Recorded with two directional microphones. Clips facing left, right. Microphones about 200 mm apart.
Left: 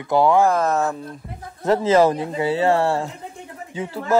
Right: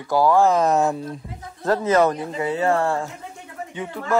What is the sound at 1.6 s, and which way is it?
A man's voice, 25° left (ahead or behind).